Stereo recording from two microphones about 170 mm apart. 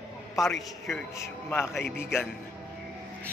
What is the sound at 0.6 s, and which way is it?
Speech, centre (ahead or behind).